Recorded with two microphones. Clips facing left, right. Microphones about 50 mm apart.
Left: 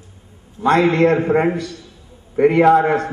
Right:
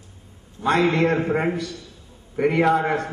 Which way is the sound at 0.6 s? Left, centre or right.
Centre.